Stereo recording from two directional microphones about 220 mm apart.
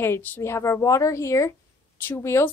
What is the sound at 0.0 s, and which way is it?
A woman's voice, 10° left (ahead or behind).